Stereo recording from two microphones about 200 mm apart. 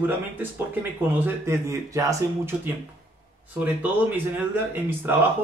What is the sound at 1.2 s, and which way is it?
Speech, 15° right (ahead or behind).